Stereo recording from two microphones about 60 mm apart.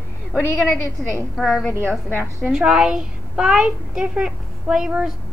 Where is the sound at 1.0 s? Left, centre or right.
Centre.